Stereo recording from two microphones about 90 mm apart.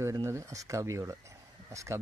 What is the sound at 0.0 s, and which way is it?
Speech, 35° right (ahead or behind).